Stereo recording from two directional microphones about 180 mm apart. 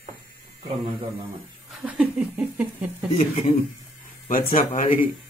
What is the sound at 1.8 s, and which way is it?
Speech, 5° right (ahead or behind).